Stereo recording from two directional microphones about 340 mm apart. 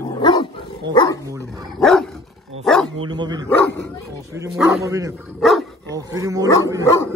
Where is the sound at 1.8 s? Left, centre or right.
Centre.